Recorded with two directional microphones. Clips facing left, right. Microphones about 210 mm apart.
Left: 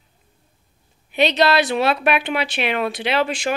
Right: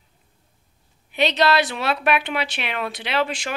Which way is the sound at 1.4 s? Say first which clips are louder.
Left 3 dB; 15° left (ahead or behind).